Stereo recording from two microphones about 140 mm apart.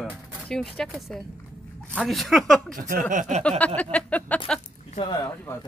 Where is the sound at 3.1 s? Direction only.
60° right (ahead or behind).